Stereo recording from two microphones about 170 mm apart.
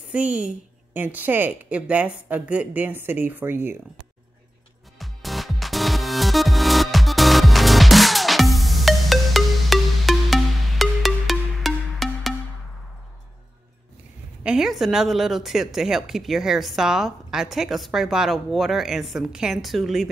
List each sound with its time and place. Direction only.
0.1 s speech: 5° right (ahead or behind)
4.9 s music: centre (ahead or behind)
14.4 s a woman's voice: 5° right (ahead or behind)